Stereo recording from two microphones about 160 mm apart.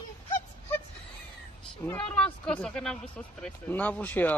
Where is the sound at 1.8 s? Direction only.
5° left (ahead or behind).